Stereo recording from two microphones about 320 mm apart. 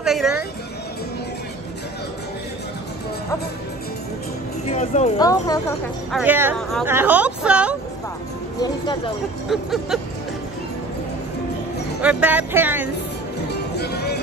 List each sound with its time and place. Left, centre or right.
0.0 s a sound: centre
4.6 s speech: left
6.1 s speech: centre
8.5 s speech: centre
9.5 s speech: centre
12.0 s speech: centre
13.5 s music: left